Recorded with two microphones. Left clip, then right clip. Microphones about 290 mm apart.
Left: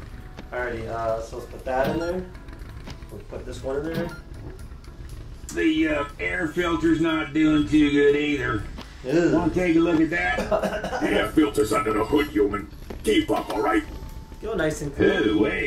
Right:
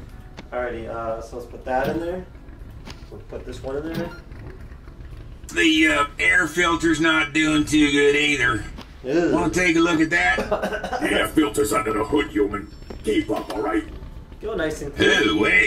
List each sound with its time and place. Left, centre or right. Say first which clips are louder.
0.5 s a man's voice: right 2 dB; centre
3.4 s a man's voice: left 1 dB; centre
5.6 s speech: right 5 dB; right
6.5 s speech: right 3 dB; right
8.7 s a sound: right 1 dB; centre
9.5 s speech: right 2 dB; right
10.5 s a man's voice: even; centre
11.0 s a man's voice: right 1 dB; centre
15.2 s speech: right 5 dB; right